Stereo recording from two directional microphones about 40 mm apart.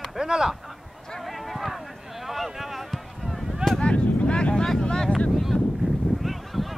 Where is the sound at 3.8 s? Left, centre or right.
Left.